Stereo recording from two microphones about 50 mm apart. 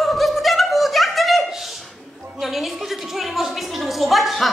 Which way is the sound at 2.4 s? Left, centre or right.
Centre.